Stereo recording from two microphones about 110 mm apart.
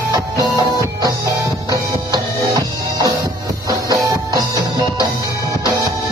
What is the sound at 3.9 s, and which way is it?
Music, 30° right (ahead or behind).